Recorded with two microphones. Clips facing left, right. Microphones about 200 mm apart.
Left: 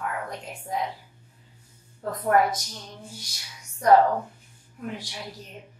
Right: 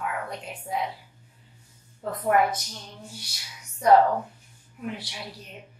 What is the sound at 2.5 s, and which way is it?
Speech, 10° left (ahead or behind).